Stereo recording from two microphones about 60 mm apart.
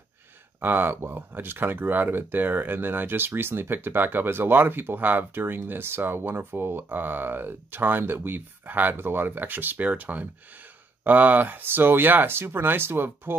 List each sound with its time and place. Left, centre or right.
0.6 s speech: right